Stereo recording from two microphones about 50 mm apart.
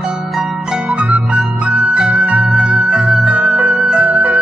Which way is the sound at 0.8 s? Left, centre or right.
Right.